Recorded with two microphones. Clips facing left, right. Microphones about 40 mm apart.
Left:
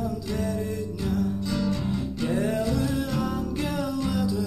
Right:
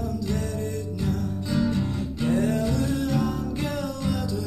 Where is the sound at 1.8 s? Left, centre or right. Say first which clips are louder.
Right 1 dB; centre.